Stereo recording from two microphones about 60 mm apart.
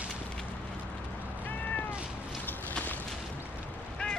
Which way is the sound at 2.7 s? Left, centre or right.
Left.